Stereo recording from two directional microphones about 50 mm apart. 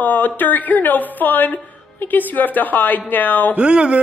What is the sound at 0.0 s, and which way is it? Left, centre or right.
A woman's voice, left.